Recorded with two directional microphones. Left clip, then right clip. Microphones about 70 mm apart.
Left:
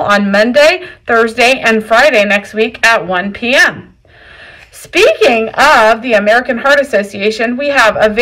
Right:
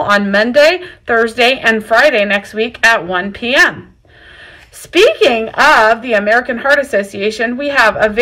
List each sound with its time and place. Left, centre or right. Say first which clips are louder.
0.0 s a woman's voice: left 2 dB; right
4.9 s a woman's voice: left 1 dB; right
6.8 s a woman's voice: left 3 dB; centre
7.2 s a woman's voice: left 3 dB; right